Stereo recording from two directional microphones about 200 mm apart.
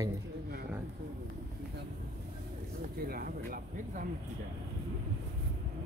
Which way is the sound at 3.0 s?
50° right (ahead or behind).